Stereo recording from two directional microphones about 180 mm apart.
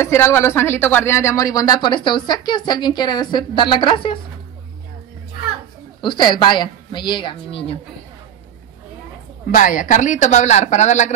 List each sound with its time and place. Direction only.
0.0 s speech: 15° left (ahead or behind)
5.9 s speech: 25° left (ahead or behind)
9.5 s speech: 50° left (ahead or behind)